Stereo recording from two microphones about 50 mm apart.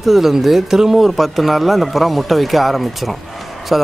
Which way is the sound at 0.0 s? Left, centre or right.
Centre.